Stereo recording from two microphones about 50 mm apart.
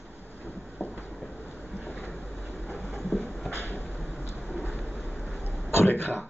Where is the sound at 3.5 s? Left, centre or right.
Left.